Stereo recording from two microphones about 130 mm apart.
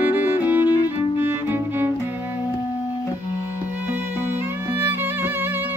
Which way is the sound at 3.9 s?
15° right (ahead or behind).